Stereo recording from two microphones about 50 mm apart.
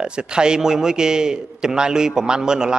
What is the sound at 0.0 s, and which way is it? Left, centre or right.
A man's voice, centre.